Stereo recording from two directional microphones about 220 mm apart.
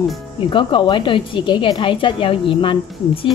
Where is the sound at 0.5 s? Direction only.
20° left (ahead or behind).